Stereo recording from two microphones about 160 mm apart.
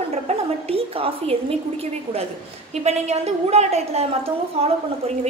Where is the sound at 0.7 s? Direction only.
35° right (ahead or behind).